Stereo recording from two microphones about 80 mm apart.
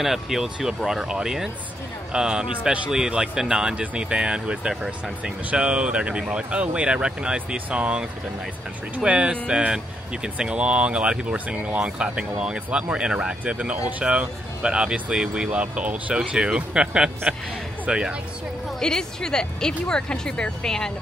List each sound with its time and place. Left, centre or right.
0.0 s speech: centre
18.8 s speech: centre